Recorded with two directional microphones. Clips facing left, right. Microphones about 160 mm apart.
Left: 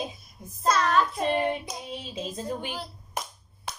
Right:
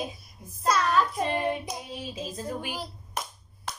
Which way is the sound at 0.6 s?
10° right (ahead or behind).